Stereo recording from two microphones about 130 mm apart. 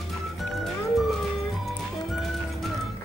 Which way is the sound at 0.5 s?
Centre (ahead or behind).